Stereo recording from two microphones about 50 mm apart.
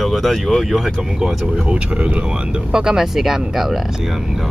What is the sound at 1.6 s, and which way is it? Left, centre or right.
Speech, right.